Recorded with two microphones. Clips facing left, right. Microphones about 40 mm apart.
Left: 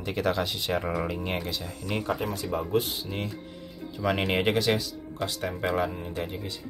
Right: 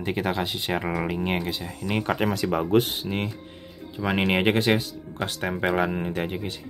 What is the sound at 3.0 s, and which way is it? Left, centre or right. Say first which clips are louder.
Speech: right 5 dB; right.